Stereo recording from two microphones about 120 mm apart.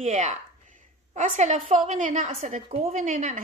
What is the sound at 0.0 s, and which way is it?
A woman's voice, 75° right (ahead or behind).